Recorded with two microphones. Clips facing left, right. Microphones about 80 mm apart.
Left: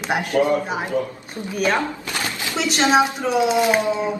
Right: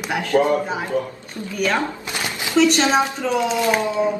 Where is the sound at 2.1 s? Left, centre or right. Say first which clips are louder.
Even; centre.